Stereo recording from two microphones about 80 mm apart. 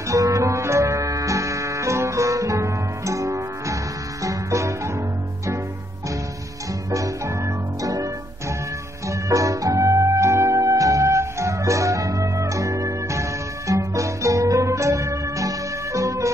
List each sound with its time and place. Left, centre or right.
0.1 s music: right
6.9 s music: right